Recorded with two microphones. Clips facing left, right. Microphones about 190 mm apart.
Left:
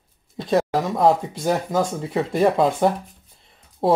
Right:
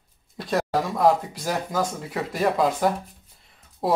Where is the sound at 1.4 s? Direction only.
25° left (ahead or behind).